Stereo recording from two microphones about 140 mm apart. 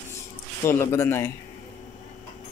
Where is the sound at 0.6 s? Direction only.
20° left (ahead or behind).